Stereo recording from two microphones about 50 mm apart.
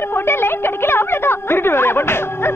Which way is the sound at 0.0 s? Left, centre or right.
Left.